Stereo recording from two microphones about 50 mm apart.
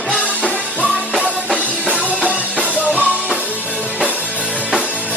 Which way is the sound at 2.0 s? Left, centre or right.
Right.